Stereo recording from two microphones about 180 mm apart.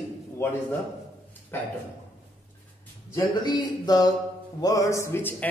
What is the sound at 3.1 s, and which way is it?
Speech, 20° left (ahead or behind).